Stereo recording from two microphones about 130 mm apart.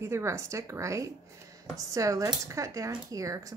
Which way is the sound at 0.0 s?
20° right (ahead or behind).